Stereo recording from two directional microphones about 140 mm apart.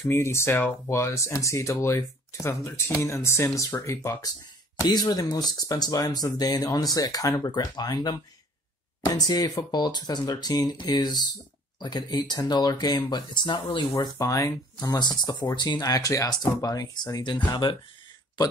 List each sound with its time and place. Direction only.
0.0 s speech: 20° left (ahead or behind)